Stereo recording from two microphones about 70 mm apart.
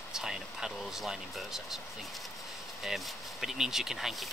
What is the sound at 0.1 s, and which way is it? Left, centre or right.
Speech, centre.